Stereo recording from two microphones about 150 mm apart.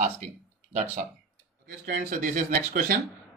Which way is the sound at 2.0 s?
55° right (ahead or behind).